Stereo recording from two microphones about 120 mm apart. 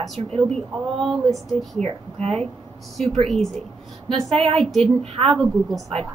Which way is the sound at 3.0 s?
Centre (ahead or behind).